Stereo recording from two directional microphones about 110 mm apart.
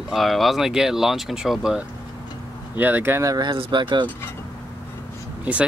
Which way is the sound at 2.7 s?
15° right (ahead or behind).